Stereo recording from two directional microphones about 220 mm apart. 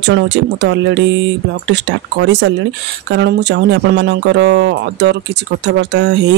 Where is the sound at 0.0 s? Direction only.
55° right (ahead or behind).